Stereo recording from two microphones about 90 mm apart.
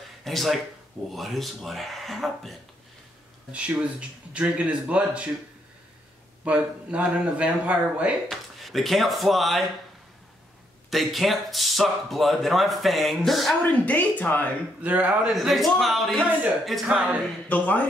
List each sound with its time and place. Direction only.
0.2 s speech: centre (ahead or behind)
3.5 s speech: 15° right (ahead or behind)
6.4 s speech: 15° right (ahead or behind)
8.3 s speech: centre (ahead or behind)
10.9 s speech: centre (ahead or behind)
13.7 s speech: 15° left (ahead or behind)
14.8 s speech: 15° right (ahead or behind)
15.2 s speech: centre (ahead or behind)
17.5 s speech: 20° left (ahead or behind)